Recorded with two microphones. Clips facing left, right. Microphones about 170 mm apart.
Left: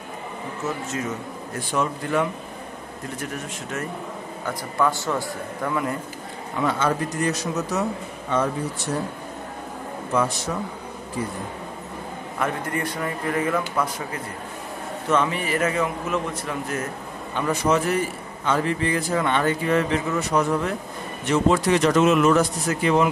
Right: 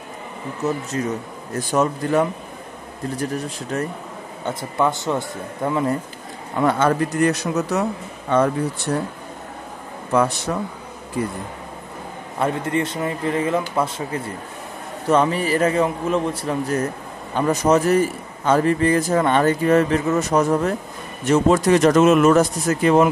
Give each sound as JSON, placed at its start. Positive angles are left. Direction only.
{"t": 0.9, "sound": "a man's voice", "side_deg": -35}
{"t": 4.5, "sound": "speech", "side_deg": -20}
{"t": 6.6, "sound": "speech", "side_deg": -55}
{"t": 12.4, "sound": "a man's voice", "side_deg": -25}